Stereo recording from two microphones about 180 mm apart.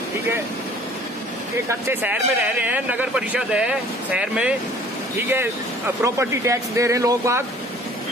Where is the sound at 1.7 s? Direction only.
10° right (ahead or behind).